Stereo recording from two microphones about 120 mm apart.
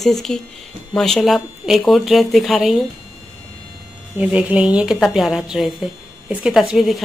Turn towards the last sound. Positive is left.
turn(degrees=0)  # may be behind; listen again after turning